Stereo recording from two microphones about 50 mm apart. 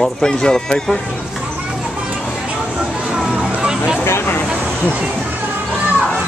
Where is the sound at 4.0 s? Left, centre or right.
Left.